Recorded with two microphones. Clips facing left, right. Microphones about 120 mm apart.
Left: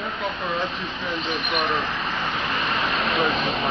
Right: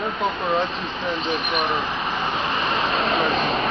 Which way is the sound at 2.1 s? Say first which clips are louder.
Right 2 dB; 15° right (ahead or behind).